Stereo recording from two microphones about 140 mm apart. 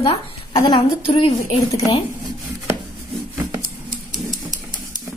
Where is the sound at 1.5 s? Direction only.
25° left (ahead or behind).